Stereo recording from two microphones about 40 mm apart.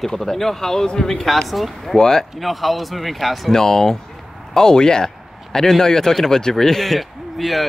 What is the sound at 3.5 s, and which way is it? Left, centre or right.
Speech, centre.